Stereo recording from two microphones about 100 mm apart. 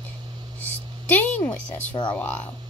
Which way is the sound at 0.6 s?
15° left (ahead or behind).